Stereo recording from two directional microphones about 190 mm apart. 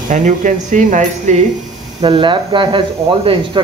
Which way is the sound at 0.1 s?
40° right (ahead or behind).